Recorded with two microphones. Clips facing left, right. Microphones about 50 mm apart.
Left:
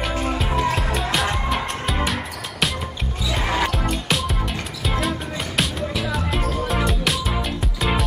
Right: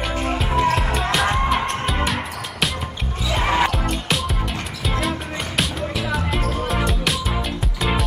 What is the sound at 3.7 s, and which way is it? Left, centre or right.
Music, centre.